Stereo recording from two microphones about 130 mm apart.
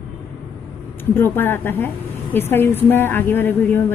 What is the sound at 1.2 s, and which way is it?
A woman's voice, 15° left (ahead or behind).